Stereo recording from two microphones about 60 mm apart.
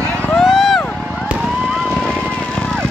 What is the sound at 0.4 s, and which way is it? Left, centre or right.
Vehicle, centre.